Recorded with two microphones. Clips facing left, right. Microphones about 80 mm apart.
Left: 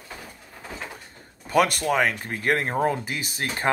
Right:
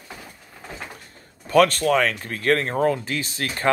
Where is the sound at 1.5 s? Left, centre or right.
Centre.